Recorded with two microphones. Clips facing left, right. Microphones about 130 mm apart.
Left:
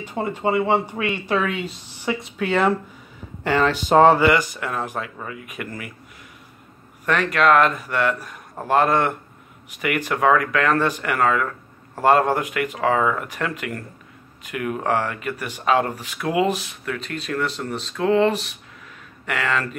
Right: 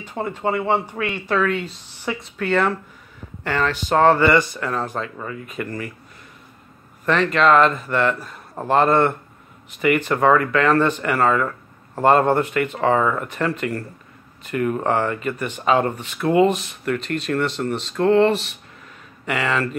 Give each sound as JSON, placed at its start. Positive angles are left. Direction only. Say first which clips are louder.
{"t": 0.0, "sound": "speech", "louder": "left 1 dB", "side_deg": 10}
{"t": 7.1, "sound": "speech", "louder": "right 1 dB", "side_deg": 5}